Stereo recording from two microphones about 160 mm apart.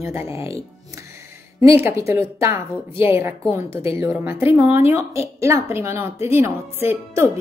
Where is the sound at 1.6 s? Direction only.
15° right (ahead or behind).